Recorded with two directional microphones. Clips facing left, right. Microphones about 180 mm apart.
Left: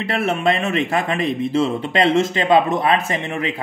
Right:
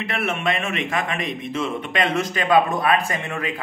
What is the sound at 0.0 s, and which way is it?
Speech, 35° left (ahead or behind).